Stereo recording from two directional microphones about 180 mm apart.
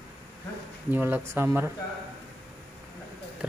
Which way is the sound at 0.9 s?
10° right (ahead or behind).